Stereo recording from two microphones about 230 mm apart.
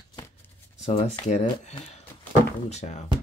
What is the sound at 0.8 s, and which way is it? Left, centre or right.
Speech, left.